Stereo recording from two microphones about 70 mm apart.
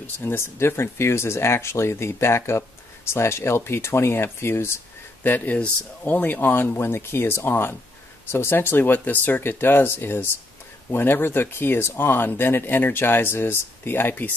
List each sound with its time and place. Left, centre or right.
0.0 s speech: left
5.2 s speech: left